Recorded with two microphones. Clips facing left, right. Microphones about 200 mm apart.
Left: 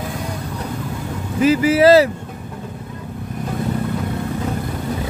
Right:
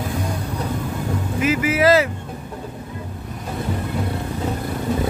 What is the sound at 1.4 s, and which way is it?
Speech, 30° left (ahead or behind).